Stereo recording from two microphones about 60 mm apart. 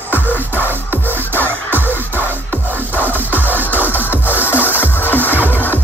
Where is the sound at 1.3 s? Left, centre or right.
Right.